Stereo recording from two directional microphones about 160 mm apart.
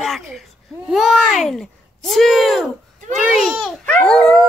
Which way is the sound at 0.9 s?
Centre (ahead or behind).